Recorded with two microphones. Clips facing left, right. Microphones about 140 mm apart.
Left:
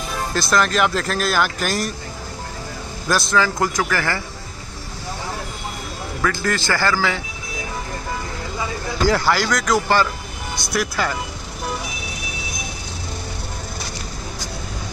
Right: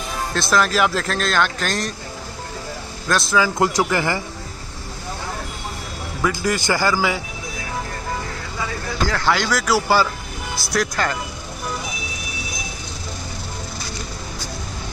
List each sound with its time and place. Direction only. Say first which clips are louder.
0.3 s speech: even; centre (ahead or behind)
3.1 s speech: even; centre (ahead or behind)
3.3 s speech: right 3 dB; 10° right (ahead or behind)
6.2 s speech: right 1 dB; 15° right (ahead or behind)
9.1 s speech: right 1 dB; 5° left (ahead or behind)